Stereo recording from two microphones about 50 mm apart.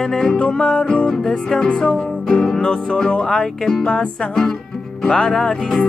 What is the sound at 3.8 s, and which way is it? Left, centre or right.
Music, left.